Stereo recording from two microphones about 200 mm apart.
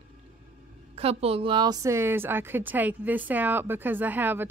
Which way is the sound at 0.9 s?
30° right (ahead or behind).